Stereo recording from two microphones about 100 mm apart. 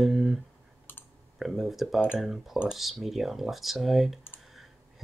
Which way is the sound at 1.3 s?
5° right (ahead or behind).